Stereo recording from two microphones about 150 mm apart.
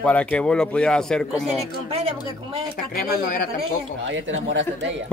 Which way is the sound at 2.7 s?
85° left.